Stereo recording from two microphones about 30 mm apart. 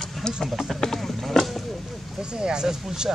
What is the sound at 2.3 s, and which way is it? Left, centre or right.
Speech, right.